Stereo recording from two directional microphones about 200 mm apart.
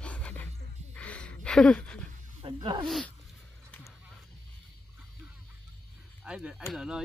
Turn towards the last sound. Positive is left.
turn(degrees=-5)  # may be behind; listen again after turning